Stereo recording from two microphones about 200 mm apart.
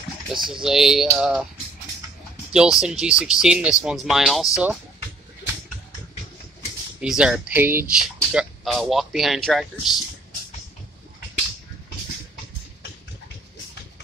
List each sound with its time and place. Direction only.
0.5 s speech: centre (ahead or behind)
2.5 s speech: 5° right (ahead or behind)
7.0 s speech: 5° right (ahead or behind)